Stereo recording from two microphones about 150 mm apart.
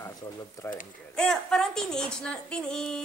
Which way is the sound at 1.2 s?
5° left (ahead or behind).